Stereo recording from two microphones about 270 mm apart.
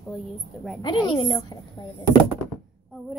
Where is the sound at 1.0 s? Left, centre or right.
Centre.